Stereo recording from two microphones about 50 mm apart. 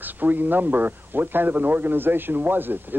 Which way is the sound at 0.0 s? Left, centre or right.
Right.